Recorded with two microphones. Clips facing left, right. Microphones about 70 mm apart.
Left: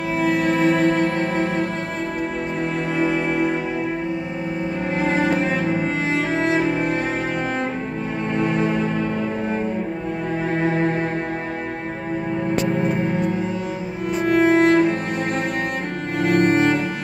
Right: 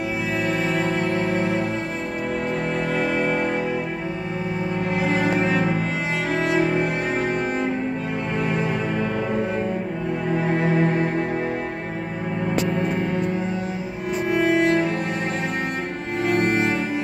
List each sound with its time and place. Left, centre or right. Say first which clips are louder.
14.3 s cello: left 4 dB; left
16.3 s cello: left 5 dB; left